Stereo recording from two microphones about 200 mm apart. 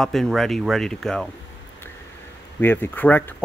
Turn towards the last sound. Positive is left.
turn(degrees=10)  # may be behind; listen again after turning